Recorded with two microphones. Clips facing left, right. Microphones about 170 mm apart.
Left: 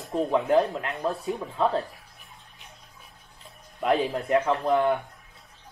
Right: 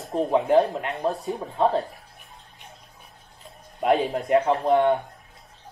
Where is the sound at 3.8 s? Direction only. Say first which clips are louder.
Right 3 dB; 35° right (ahead or behind).